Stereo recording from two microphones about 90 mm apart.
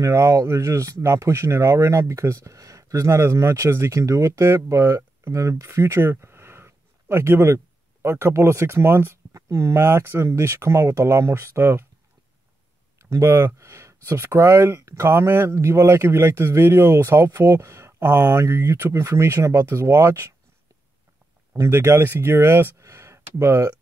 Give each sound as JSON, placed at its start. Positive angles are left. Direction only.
{"t": 0.0, "sound": "speech", "side_deg": -35}
{"t": 13.0, "sound": "speech", "side_deg": -30}
{"t": 21.5, "sound": "speech", "side_deg": -30}
{"t": 22.8, "sound": "a sound", "side_deg": -35}